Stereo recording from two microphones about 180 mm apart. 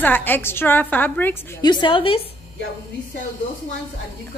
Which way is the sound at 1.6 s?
25° left (ahead or behind).